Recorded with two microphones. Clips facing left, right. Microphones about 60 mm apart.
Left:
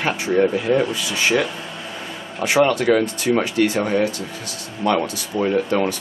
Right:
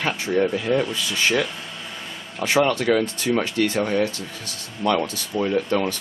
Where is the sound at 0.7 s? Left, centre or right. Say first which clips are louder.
Left 3 dB; centre.